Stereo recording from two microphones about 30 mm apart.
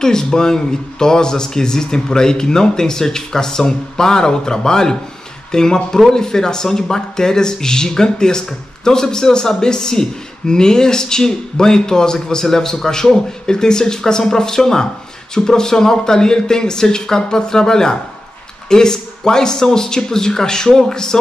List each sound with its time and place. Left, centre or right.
0.0 s a man's voice: left